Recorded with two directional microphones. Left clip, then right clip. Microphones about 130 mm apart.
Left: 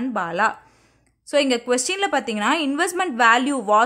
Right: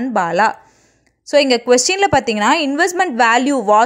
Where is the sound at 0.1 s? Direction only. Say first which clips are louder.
Right 7 dB; 35° right (ahead or behind).